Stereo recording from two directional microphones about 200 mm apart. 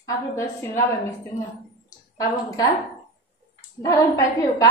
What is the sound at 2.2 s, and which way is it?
Speech, 20° left (ahead or behind).